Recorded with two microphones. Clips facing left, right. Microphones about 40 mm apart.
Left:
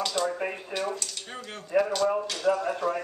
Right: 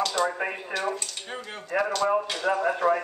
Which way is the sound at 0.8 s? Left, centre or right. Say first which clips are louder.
Right 3 dB; centre.